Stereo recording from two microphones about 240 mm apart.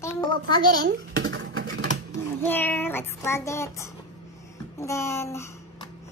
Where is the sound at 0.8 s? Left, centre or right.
Right.